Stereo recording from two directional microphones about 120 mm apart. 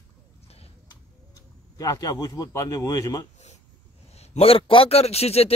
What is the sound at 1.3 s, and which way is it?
Speech, 30° left (ahead or behind).